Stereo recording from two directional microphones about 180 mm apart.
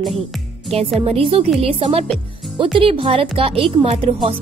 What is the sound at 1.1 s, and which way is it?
Speech, 30° right (ahead or behind).